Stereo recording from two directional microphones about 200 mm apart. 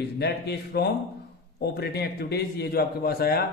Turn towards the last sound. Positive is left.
turn(degrees=50)  # may be behind; listen again after turning